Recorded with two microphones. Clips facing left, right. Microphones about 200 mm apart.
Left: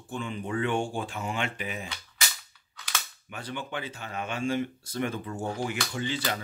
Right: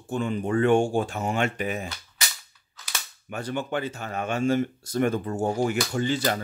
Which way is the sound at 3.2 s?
45° right (ahead or behind).